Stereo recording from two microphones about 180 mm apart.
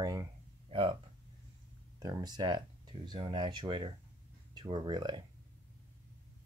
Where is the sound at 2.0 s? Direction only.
20° right (ahead or behind).